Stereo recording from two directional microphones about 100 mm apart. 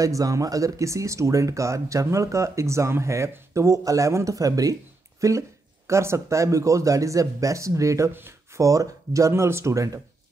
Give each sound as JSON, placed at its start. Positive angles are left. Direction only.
{"t": 0.0, "sound": "speech", "side_deg": -35}